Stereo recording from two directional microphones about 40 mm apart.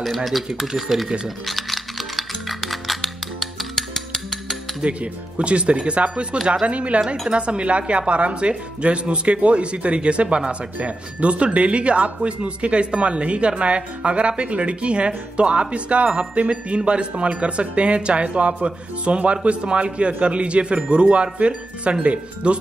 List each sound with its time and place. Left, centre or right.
0.0 s speech: centre
1.4 s music: centre
4.8 s speech: right